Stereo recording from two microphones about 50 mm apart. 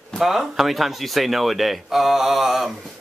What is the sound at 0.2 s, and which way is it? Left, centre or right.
Speech, centre.